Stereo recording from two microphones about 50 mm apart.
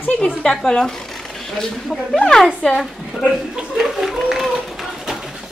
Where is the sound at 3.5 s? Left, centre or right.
Centre.